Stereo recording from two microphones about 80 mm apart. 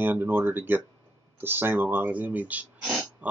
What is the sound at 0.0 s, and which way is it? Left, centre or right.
Speech, right.